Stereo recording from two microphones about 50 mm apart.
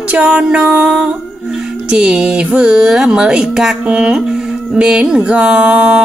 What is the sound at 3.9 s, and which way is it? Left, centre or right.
A woman's voice, centre.